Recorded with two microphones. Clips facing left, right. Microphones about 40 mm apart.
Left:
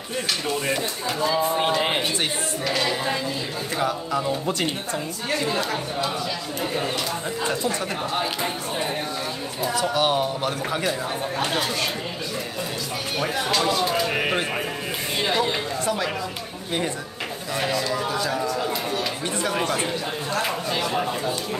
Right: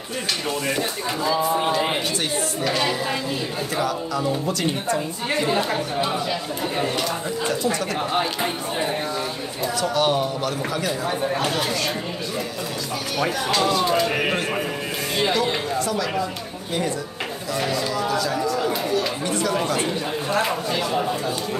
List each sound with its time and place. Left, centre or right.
2.6 s speech: centre
3.8 s speech: left
5.3 s speech: centre
8.1 s speech: centre
9.8 s speech: centre
13.5 s speech: centre
15.8 s speech: left
17.9 s speech: left
20.4 s speech: centre